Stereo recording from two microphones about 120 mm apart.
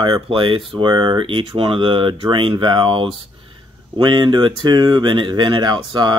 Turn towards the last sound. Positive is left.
turn(degrees=-40)  # may be behind; listen again after turning